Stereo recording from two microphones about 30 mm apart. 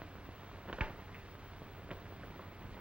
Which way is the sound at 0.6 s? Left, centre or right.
Right.